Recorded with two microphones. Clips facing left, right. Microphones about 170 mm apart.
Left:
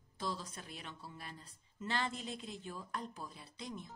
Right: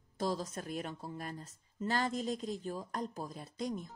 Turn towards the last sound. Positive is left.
turn(degrees=-45)  # may be behind; listen again after turning